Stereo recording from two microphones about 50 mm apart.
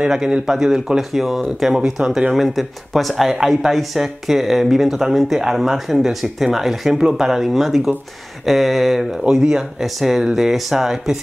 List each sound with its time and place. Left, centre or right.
0.0 s speech: centre